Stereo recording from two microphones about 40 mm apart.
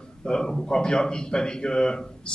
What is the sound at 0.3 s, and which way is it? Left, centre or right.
A man's voice, centre.